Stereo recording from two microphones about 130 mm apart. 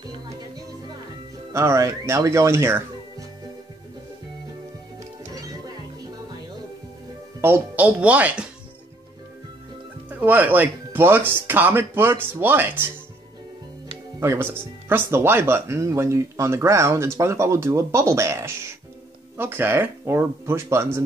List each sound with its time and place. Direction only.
1.5 s speech: 20° right (ahead or behind)
7.4 s speech: 15° right (ahead or behind)
10.0 s speech: 15° right (ahead or behind)
14.2 s speech: 20° right (ahead or behind)